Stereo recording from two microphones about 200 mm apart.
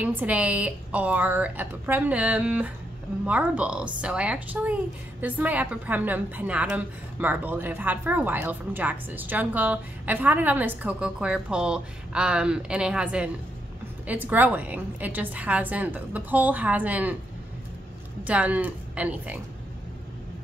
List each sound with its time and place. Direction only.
0.0 s a woman's voice: 10° right (ahead or behind)
18.2 s a woman's voice: 5° right (ahead or behind)